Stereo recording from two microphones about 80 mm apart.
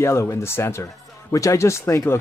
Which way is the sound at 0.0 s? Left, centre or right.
Left.